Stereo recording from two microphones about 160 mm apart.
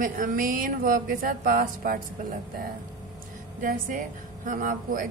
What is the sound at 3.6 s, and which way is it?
A woman's voice, 60° right (ahead or behind).